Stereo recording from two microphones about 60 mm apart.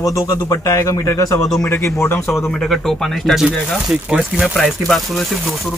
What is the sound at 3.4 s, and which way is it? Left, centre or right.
Speech, centre.